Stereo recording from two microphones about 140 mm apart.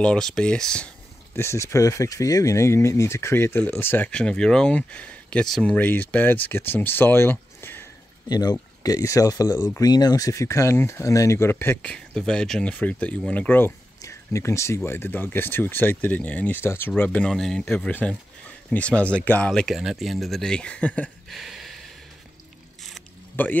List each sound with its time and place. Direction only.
0.0 s speech: 5° left (ahead or behind)
1.3 s speech: 20° left (ahead or behind)
8.3 s speech: 30° left (ahead or behind); by 21.7 s centre (ahead or behind)
23.4 s speech: 15° left (ahead or behind)